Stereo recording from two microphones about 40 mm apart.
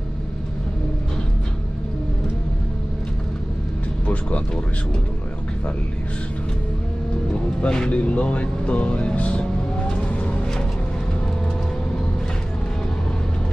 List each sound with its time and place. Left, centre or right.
7.6 s speech: centre
7.9 s vehicle: left